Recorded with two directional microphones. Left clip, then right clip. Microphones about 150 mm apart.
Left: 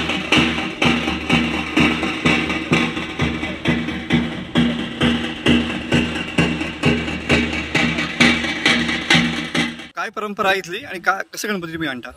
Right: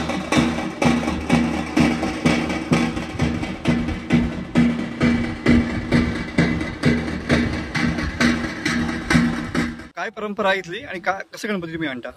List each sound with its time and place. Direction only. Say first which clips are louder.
0.1 s music: left 4 dB; 15° right (ahead or behind); by 6.5 s 5° left (ahead or behind)
6.8 s music: left 3 dB; 35° left (ahead or behind)
10.4 s a man's voice: left 2 dB; 10° right (ahead or behind)